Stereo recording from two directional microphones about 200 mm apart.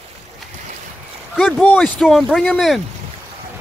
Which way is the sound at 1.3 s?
Centre (ahead or behind).